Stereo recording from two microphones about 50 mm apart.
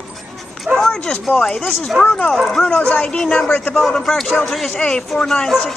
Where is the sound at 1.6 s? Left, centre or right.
Centre.